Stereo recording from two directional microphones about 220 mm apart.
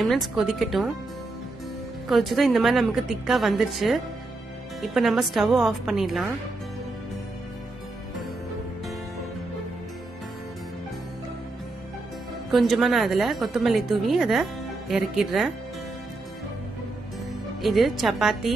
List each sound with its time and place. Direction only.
0.0 s a woman's voice: centre (ahead or behind)
2.0 s a woman's voice: centre (ahead or behind)
12.4 s a woman's voice: centre (ahead or behind)
17.6 s a woman's voice: centre (ahead or behind)